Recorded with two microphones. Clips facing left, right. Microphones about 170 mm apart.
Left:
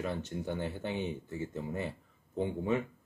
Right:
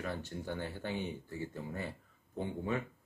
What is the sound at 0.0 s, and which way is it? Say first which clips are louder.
Speech: left 4 dB; 20° left (ahead or behind).